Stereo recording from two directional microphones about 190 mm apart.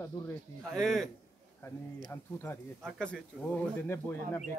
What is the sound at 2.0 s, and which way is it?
A man's voice, 10° left (ahead or behind).